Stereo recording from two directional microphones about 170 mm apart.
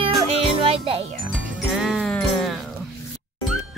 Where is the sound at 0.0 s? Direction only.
35° right (ahead or behind).